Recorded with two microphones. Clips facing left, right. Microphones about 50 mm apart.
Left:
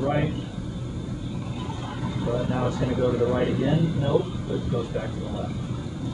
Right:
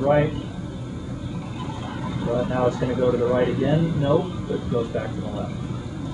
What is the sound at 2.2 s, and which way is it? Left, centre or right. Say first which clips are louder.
Speech: right 5 dB; centre.